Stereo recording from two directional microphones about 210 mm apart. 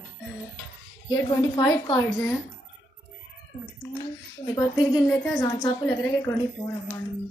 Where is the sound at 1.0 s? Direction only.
15° left (ahead or behind).